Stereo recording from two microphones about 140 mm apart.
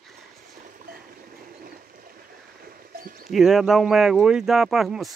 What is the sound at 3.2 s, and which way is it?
Speech, centre (ahead or behind).